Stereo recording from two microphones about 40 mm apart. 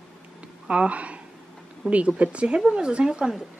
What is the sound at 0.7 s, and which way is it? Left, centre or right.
A woman's voice, right.